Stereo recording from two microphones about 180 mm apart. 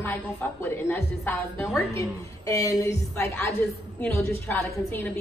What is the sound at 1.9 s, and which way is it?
A woman's voice, 20° left (ahead or behind).